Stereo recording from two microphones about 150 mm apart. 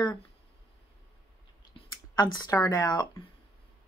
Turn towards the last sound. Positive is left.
turn(degrees=25)  # may be behind; listen again after turning